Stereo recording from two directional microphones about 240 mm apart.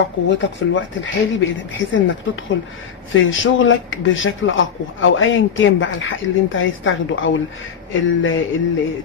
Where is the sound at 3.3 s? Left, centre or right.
Left.